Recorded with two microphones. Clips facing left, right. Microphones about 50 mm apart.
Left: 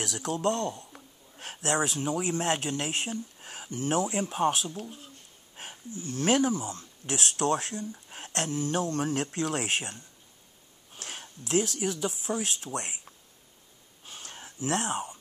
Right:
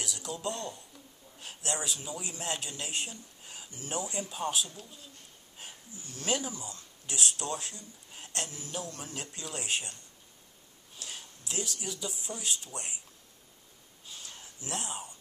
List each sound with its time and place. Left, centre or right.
0.0 s a sound: left
2.0 s speech: left
4.7 s speech: left
11.0 s speech: left
14.0 s gasp: left
14.6 s speech: left